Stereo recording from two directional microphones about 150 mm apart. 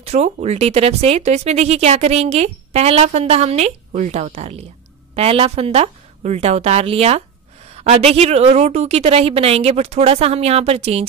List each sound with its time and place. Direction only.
0.0 s speech: 45° right (ahead or behind)